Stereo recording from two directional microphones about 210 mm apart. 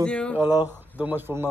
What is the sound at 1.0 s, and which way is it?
Speech, 5° right (ahead or behind).